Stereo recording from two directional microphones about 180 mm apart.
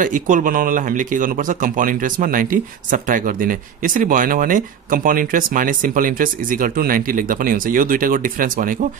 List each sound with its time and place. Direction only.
0.0 s speech: 45° right (ahead or behind)